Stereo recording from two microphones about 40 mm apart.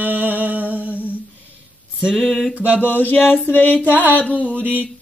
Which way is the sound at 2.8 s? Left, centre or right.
Left.